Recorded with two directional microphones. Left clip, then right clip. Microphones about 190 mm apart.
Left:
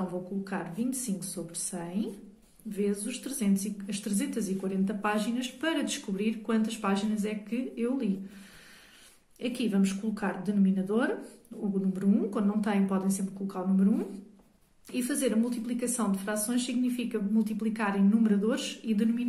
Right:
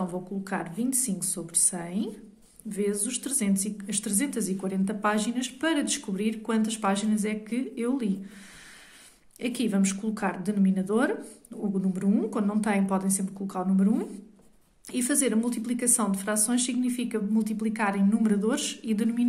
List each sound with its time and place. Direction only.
0.4 s speech: 40° right (ahead or behind)
9.4 s speech: 40° right (ahead or behind)